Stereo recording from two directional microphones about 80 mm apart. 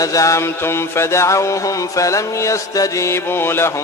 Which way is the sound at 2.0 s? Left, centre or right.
Left.